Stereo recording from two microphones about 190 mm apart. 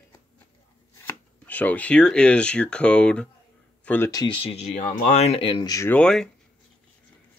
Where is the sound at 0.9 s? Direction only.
10° left (ahead or behind).